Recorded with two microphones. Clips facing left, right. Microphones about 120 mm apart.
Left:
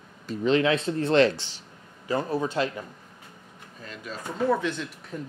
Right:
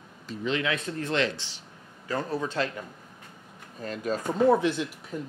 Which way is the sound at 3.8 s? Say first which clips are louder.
Right 8 dB; 45° right (ahead or behind).